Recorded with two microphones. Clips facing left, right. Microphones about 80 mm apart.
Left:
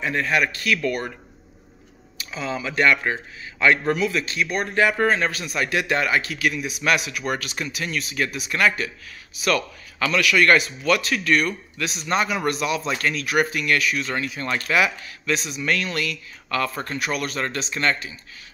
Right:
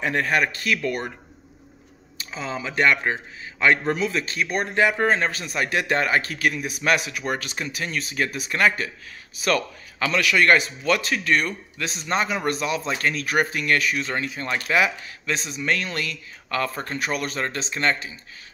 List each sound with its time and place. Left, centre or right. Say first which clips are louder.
0.0 s speech: even; right
0.4 s speech: left 1 dB; right
2.1 s speech: left 2 dB; right
4.6 s a man's voice: left 1 dB; right